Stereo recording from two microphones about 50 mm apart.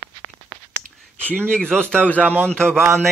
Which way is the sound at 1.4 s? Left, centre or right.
Centre.